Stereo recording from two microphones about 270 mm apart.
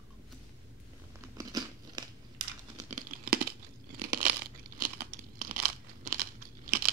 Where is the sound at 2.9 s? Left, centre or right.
Right.